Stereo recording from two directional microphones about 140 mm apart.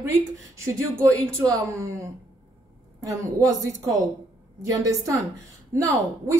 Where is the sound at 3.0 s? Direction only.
25° right (ahead or behind).